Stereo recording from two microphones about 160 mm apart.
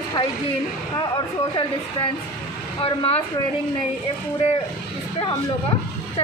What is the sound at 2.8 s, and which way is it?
Speech, 40° left (ahead or behind).